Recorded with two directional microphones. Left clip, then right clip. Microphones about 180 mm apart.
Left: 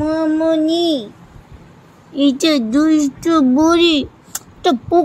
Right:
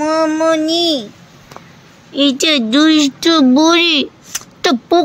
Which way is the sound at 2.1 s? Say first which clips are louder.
Right 2 dB; centre (ahead or behind).